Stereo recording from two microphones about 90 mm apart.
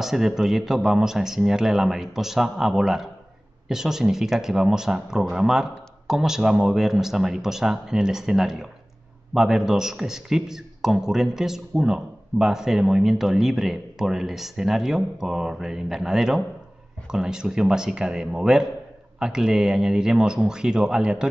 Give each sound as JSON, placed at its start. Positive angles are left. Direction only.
{"t": 0.0, "sound": "speech", "side_deg": -5}